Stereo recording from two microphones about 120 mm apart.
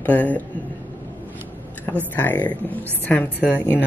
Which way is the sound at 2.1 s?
15° left (ahead or behind).